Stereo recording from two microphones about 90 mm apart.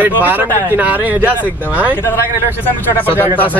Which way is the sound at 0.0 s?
20° right (ahead or behind).